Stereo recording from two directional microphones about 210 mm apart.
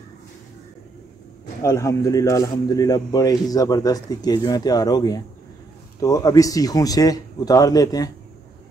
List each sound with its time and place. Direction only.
1.6 s speech: 15° left (ahead or behind)